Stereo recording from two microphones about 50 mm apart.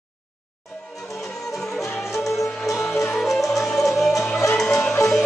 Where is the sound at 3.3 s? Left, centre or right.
Centre.